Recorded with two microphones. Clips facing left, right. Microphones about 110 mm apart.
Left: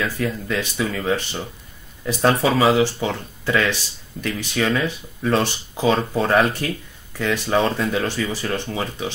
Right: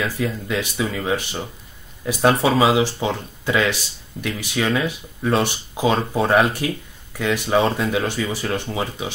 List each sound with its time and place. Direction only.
0.0 s speech: 15° right (ahead or behind)